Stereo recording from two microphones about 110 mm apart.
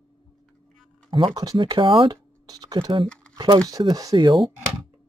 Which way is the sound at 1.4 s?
45° right (ahead or behind).